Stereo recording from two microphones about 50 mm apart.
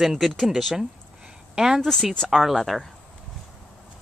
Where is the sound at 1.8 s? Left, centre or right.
Centre.